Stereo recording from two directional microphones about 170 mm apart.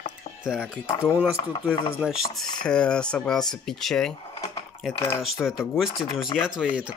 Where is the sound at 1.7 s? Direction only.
10° left (ahead or behind).